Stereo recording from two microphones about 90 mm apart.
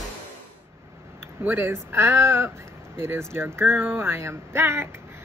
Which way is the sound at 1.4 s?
25° right (ahead or behind).